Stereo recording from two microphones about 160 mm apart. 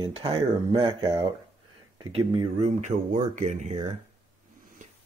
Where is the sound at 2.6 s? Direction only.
50° right (ahead or behind).